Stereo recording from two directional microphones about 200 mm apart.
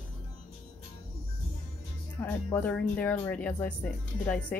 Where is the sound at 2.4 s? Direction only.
10° left (ahead or behind).